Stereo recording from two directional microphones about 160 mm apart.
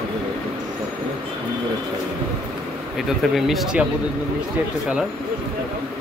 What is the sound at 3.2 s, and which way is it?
Speech, centre (ahead or behind).